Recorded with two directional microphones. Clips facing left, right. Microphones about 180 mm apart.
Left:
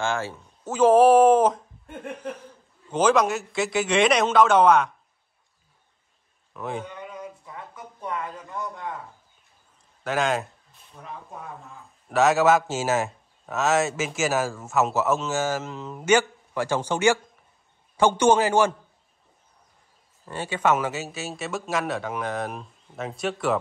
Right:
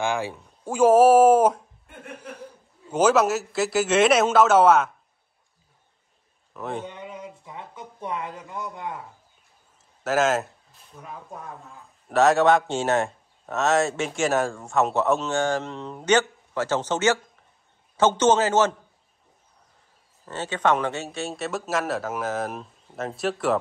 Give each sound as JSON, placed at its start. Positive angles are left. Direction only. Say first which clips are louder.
{"t": 0.0, "sound": "speech", "louder": "right 1 dB", "side_deg": -15}
{"t": 2.9, "sound": "speech", "louder": "right 1 dB", "side_deg": -5}
{"t": 6.5, "sound": "speech", "louder": "even", "side_deg": 0}
{"t": 6.9, "sound": "a sound", "louder": "even", "side_deg": -20}
{"t": 10.0, "sound": "a man's voice", "louder": "right 3 dB", "side_deg": -5}
{"t": 20.2, "sound": "speech", "louder": "even", "side_deg": 10}